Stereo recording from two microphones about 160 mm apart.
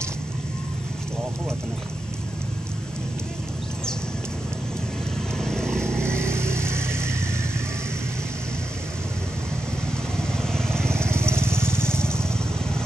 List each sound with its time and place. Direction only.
5.4 s vehicle: 5° left (ahead or behind)
6.0 s vehicle: 15° right (ahead or behind)
10.1 s vehicle: 5° left (ahead or behind)
10.9 s vehicle: 15° right (ahead or behind)
11.9 s vehicle: 5° left (ahead or behind)